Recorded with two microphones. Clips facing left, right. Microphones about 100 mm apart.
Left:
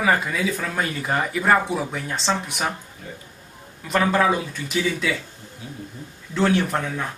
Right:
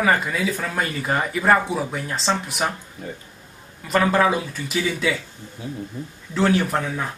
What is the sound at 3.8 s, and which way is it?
Speech, centre (ahead or behind).